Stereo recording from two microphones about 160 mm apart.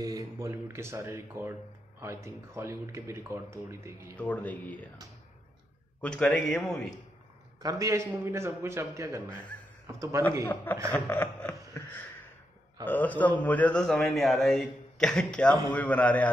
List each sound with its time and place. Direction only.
0.0 s speech: 20° right (ahead or behind)
4.2 s a man's voice: 10° left (ahead or behind)
5.9 s speech: 5° left (ahead or behind)
7.6 s a man's voice: 20° right (ahead or behind)
10.5 s a man's voice: 10° left (ahead or behind)
11.1 s a sound: 15° left (ahead or behind)
12.8 s a man's voice: 10° left (ahead or behind)